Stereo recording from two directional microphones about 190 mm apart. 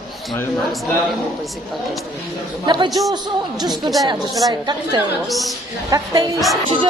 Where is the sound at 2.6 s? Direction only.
20° right (ahead or behind).